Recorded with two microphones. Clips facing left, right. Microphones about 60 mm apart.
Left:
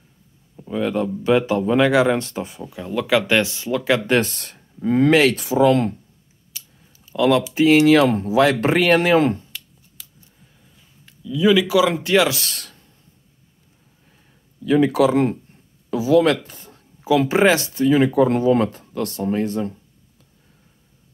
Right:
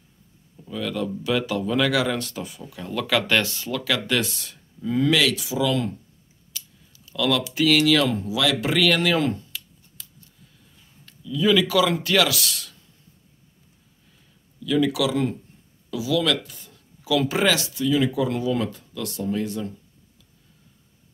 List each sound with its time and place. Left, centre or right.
0.6 s speech: left
4.2 s speech: left
6.5 s a sound: left
7.5 s speech: left
8.0 s speech: left
11.1 s speech: centre
12.0 s speech: left
14.6 s speech: left